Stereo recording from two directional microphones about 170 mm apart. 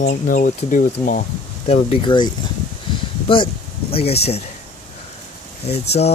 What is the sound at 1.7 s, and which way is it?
Speech, 30° left (ahead or behind).